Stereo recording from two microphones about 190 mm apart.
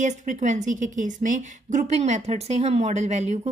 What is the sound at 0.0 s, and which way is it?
A woman's voice, 40° right (ahead or behind).